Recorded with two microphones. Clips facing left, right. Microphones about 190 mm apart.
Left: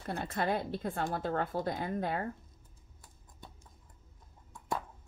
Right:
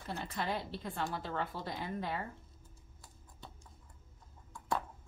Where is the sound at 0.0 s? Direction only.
55° left (ahead or behind).